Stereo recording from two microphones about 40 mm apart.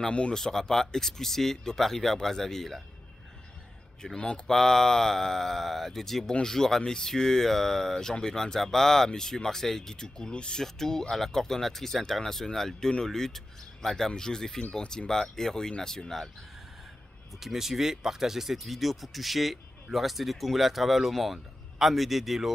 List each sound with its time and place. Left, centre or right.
0.1 s speech: left
0.4 s speech: centre
4.0 s speech: centre
10.6 s speech: centre
17.4 s speech: centre